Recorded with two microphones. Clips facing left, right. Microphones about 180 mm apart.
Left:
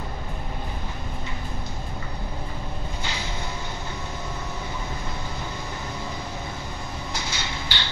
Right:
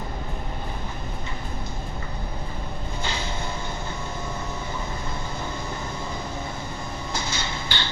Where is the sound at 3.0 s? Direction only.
50° right (ahead or behind).